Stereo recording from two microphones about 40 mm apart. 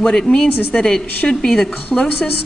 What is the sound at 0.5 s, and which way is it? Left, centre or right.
Speech, left.